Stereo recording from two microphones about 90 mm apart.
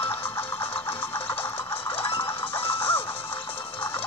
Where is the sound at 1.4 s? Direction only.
25° left (ahead or behind).